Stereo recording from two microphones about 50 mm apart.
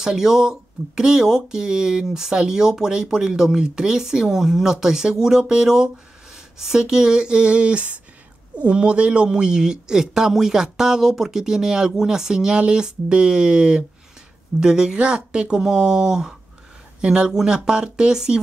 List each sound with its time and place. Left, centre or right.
0.0 s speech: centre